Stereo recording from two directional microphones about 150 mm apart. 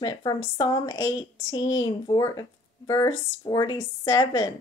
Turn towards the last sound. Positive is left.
turn(degrees=25)  # may be behind; listen again after turning